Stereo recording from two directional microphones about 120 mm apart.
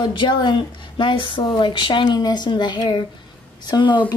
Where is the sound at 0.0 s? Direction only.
40° left (ahead or behind).